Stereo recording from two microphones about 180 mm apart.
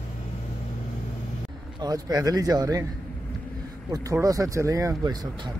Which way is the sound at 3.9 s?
20° right (ahead or behind).